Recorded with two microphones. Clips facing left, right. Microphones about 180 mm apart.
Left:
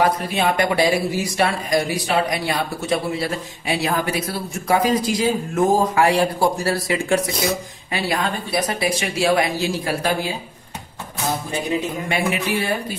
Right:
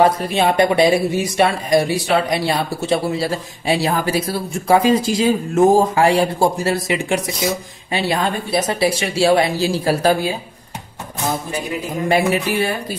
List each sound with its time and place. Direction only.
0.0 s speech: 25° right (ahead or behind)
12.1 s speech: 40° right (ahead or behind)